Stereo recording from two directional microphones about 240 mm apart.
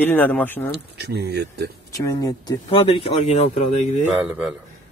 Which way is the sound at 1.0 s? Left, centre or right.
Right.